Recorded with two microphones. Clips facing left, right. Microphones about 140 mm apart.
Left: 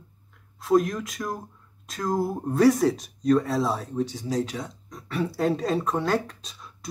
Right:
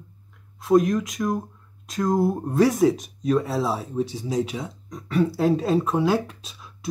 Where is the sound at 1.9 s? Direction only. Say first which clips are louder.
Right 5 dB; centre (ahead or behind).